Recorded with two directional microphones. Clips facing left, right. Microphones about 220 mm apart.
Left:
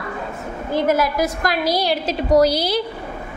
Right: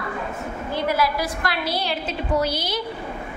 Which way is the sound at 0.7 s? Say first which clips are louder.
Left 5 dB; 45° left (ahead or behind).